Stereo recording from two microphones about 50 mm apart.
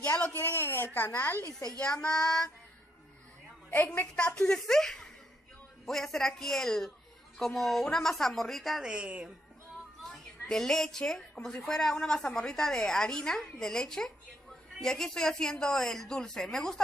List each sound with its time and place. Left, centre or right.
0.4 s a child's voice: left
1.8 s a woman's voice: centre
4.1 s a woman's voice: centre
8.8 s a woman's voice: right
10.5 s a woman's voice: centre